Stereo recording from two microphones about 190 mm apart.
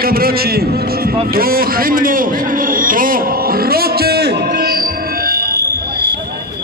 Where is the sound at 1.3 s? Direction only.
50° right (ahead or behind).